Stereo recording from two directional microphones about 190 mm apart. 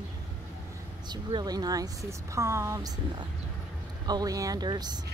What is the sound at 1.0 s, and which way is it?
Speech, 20° right (ahead or behind).